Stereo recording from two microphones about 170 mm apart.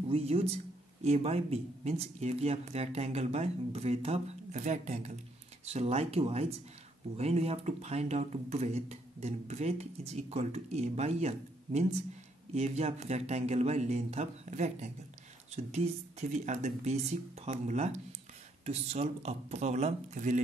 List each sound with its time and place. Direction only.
0.1 s speech: 35° right (ahead or behind)